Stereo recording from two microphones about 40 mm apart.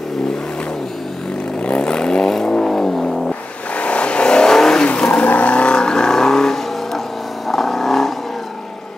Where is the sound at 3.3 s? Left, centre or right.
Left.